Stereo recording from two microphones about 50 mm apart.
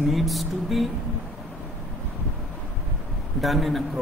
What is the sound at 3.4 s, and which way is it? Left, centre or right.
Speech, centre.